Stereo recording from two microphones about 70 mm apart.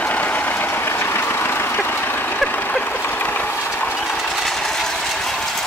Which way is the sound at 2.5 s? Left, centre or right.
Left.